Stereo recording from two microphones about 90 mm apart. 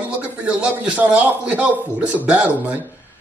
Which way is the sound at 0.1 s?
15° right (ahead or behind).